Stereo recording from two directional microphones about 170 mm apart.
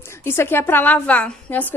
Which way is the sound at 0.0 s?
15° left (ahead or behind).